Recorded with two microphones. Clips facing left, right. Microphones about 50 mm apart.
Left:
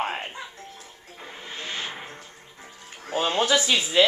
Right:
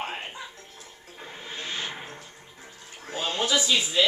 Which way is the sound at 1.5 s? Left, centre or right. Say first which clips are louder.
Left 1 dB; left.